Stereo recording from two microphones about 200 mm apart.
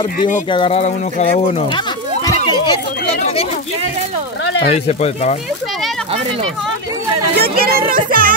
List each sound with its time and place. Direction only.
0.5 s speech: 25° left (ahead or behind)
2.2 s a sound: 20° left (ahead or behind)
4.6 s speech: 30° left (ahead or behind)
7.3 s music: 50° right (ahead or behind)